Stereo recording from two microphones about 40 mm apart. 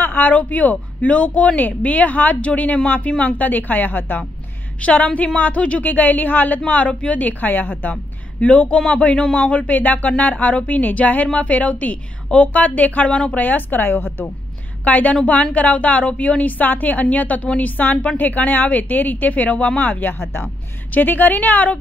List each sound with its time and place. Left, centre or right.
0.0 s a sound: left
0.4 s a woman's voice: left
4.8 s a woman's voice: left
5.9 s a woman's voice: left
7.9 s a woman's voice: left
14.9 s a woman's voice: left
19.8 s speech: left